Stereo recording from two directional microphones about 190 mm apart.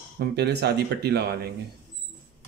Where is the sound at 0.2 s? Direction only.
60° right (ahead or behind).